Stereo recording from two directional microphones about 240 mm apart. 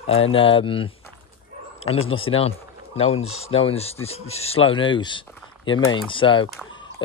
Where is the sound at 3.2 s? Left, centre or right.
Left.